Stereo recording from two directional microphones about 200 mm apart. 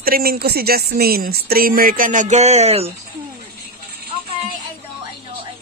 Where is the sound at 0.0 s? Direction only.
50° right (ahead or behind); by 2.9 s 30° right (ahead or behind).